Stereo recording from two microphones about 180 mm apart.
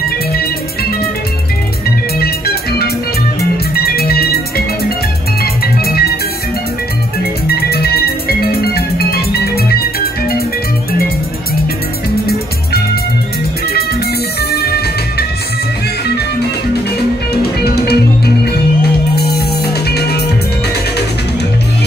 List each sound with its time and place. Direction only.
0.3 s music: 55° left (ahead or behind)
2.1 s music: 60° left (ahead or behind)
7.4 s music: 60° left (ahead or behind)
12.3 s music: 60° left (ahead or behind)
14.5 s music: 60° left (ahead or behind)
17.3 s music: 60° left (ahead or behind)